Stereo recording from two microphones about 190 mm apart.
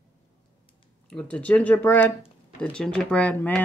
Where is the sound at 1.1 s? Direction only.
5° left (ahead or behind).